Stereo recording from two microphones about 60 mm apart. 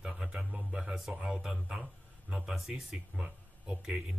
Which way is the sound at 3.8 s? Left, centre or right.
Centre.